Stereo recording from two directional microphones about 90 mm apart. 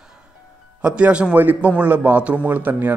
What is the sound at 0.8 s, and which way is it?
A man's voice, 10° right (ahead or behind).